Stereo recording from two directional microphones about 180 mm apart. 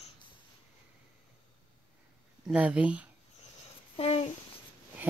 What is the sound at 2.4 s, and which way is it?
Speech, 5° right (ahead or behind).